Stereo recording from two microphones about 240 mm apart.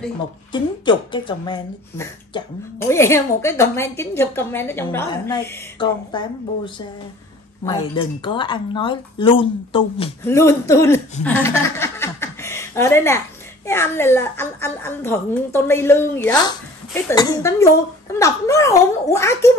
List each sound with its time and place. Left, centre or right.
0.5 s a woman's voice: centre
10.2 s a woman's voice: centre
11.2 s snicker: centre
13.7 s a woman's voice: centre